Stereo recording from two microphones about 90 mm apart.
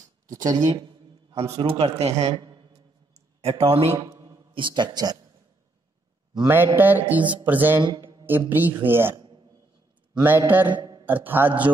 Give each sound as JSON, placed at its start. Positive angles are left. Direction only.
{"t": 0.3, "sound": "speech", "side_deg": -45}
{"t": 1.3, "sound": "a man's voice", "side_deg": -90}
{"t": 3.4, "sound": "a man's voice", "side_deg": -90}
{"t": 4.3, "sound": "a man's voice", "side_deg": -60}
{"t": 6.5, "sound": "mantra", "side_deg": -25}
{"t": 7.2, "sound": "speech", "side_deg": -65}
{"t": 7.4, "sound": "mantra", "side_deg": -20}
{"t": 9.1, "sound": "a sound", "side_deg": -55}
{"t": 10.2, "sound": "mantra", "side_deg": -20}
{"t": 10.7, "sound": "a sound", "side_deg": -55}
{"t": 11.1, "sound": "mantra", "side_deg": -20}